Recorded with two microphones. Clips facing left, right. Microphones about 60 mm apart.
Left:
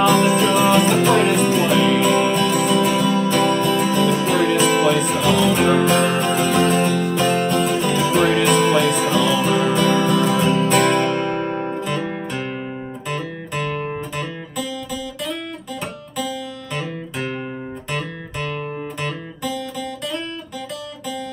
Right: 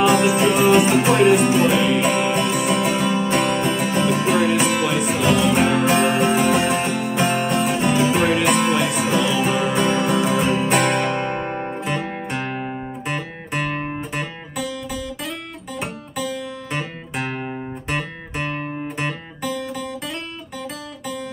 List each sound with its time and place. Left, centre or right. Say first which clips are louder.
0.0 s music: left 1 dB; centre
18.9 s music: even; right